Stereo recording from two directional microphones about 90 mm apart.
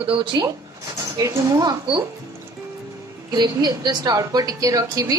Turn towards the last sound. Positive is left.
turn(degrees=-40)  # may be behind; listen again after turning